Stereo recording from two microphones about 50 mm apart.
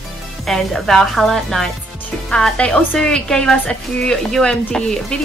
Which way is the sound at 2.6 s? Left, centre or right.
Left.